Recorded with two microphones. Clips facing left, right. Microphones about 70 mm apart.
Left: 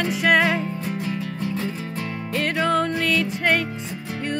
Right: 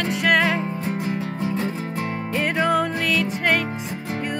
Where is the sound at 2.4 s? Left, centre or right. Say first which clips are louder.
Right 1 dB; centre.